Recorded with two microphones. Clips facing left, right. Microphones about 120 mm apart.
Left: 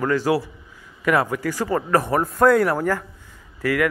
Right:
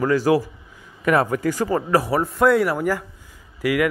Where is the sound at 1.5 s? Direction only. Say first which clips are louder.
Left 1 dB; 15° right (ahead or behind).